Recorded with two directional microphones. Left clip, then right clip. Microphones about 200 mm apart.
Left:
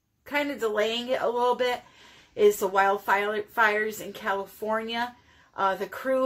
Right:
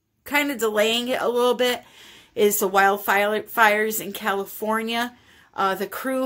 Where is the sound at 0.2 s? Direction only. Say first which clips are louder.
Right 5 dB; 55° right (ahead or behind).